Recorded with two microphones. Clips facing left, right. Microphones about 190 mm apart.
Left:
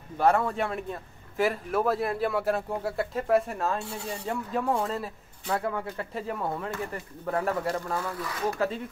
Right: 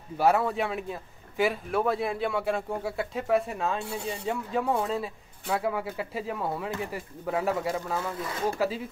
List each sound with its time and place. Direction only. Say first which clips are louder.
0.2 s a man's voice: even; 5° right (ahead or behind)
8.0 s speech: right 1 dB; 20° right (ahead or behind)
8.5 s a man's voice: even; 5° right (ahead or behind)